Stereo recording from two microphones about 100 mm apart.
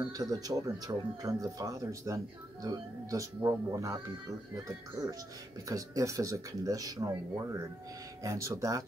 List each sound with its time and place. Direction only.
0.1 s speech: 40° right (ahead or behind)
8.2 s speech: 35° right (ahead or behind)